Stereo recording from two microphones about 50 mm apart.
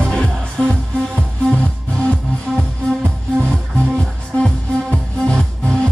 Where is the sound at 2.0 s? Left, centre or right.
Centre.